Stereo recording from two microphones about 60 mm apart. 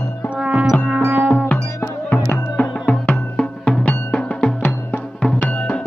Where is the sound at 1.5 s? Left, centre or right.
Left.